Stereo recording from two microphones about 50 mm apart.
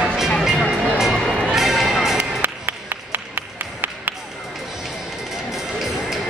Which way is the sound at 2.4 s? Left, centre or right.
Right.